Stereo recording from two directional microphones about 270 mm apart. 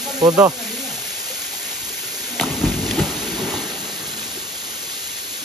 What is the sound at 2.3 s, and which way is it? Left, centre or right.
Rain, centre.